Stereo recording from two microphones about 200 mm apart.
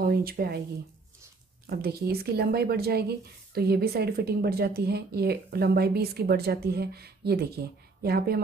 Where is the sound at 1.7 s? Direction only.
50° right (ahead or behind).